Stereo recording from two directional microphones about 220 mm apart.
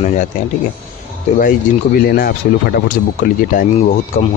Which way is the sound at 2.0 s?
45° left (ahead or behind).